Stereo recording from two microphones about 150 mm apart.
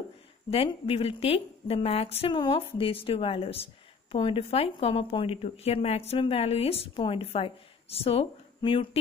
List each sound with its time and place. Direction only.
0.5 s a woman's voice: 40° left (ahead or behind)